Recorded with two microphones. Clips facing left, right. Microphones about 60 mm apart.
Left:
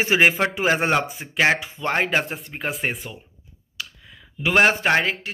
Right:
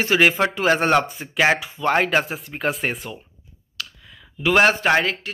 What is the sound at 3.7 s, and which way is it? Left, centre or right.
Clicking, left.